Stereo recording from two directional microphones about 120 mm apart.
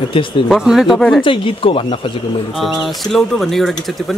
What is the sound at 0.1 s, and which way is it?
Speech, 45° left (ahead or behind).